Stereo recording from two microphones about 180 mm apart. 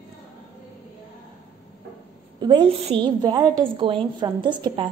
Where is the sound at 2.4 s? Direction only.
25° right (ahead or behind).